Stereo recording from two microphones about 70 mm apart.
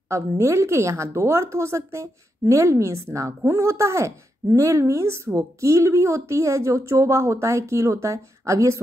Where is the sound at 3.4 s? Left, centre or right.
Right.